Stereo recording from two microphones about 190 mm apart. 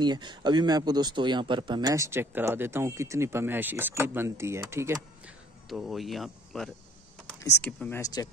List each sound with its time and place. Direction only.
0.0 s speech: 25° right (ahead or behind)
5.7 s speech: centre (ahead or behind)
7.3 s speech: 10° left (ahead or behind)
8.0 s speech: 20° left (ahead or behind)